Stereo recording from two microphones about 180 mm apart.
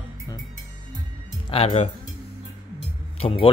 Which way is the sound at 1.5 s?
35° left (ahead or behind).